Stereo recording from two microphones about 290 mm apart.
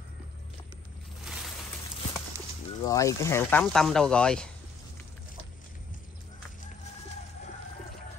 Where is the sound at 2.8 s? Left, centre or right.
Centre.